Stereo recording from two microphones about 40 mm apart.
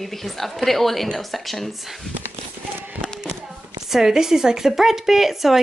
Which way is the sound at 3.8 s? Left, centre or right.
Centre.